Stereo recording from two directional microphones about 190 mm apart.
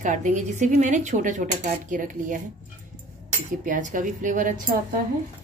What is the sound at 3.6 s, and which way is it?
Speech, 40° right (ahead or behind).